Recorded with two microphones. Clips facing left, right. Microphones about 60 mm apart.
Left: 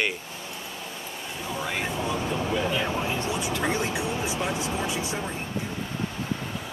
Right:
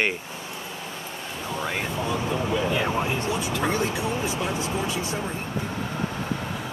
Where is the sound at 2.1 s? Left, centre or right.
Centre.